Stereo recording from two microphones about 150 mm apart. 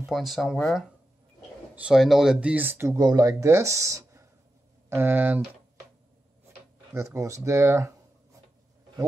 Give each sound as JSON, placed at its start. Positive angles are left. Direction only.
{"t": 0.1, "sound": "speech", "side_deg": 0}
{"t": 7.2, "sound": "speech", "side_deg": -20}